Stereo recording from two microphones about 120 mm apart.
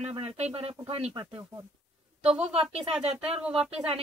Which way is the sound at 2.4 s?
60° right (ahead or behind).